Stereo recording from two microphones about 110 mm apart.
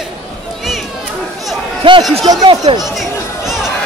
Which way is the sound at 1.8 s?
50° right (ahead or behind).